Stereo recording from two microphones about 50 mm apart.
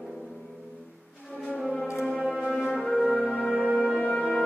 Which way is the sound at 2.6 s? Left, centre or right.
Centre.